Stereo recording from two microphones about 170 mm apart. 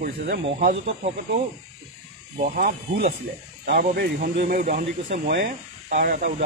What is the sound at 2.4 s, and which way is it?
Speech, 45° right (ahead or behind).